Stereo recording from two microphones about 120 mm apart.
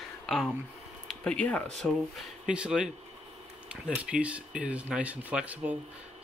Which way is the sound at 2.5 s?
5° right (ahead or behind).